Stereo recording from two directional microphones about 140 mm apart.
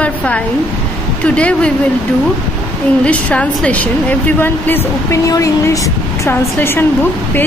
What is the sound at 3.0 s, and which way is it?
A woman's voice, 10° left (ahead or behind).